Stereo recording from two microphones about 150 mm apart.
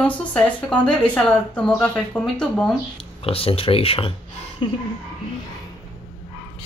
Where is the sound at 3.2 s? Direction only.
40° left (ahead or behind).